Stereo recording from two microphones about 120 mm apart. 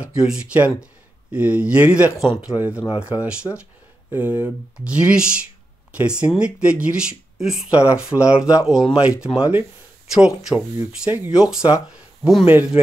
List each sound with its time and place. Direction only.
0.0 s speech: 5° right (ahead or behind)
12.4 s speech: 15° right (ahead or behind)